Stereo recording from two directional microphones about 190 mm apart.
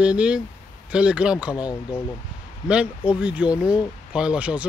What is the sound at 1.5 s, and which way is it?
Speech, 20° left (ahead or behind).